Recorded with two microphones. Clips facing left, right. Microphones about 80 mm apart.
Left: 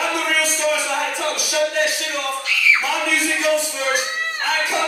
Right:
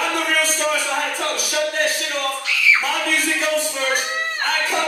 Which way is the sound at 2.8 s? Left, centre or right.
Right.